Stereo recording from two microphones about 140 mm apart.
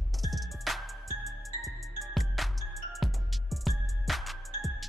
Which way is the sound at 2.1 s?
Centre (ahead or behind).